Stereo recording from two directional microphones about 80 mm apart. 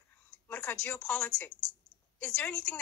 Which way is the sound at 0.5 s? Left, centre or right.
Left.